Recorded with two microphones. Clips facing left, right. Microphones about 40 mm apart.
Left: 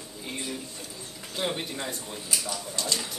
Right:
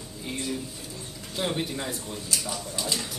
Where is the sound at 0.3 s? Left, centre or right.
Centre.